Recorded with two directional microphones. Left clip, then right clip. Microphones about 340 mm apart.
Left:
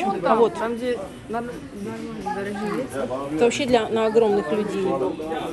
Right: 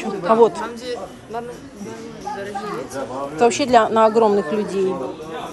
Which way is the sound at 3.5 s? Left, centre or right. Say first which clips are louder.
Right 8 dB; right.